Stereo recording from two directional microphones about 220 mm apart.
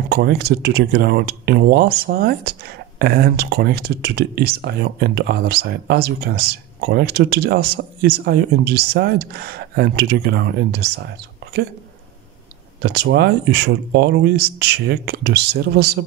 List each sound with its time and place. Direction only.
0.1 s speech: 45° right (ahead or behind)
12.9 s speech: 50° right (ahead or behind)